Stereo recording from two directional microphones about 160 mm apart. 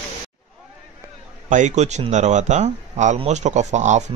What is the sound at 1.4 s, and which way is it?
Speech, 50° right (ahead or behind).